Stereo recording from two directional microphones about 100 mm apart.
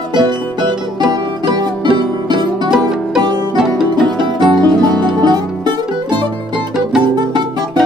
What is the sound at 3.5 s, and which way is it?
Music, 5° right (ahead or behind).